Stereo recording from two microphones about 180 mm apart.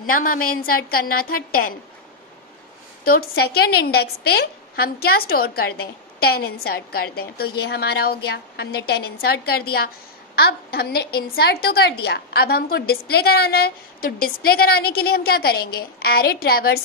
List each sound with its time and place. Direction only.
0.0 s a woman's voice: 50° left (ahead or behind)
3.1 s a woman's voice: 60° left (ahead or behind)